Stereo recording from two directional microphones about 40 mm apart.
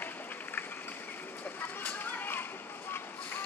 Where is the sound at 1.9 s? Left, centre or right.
Left.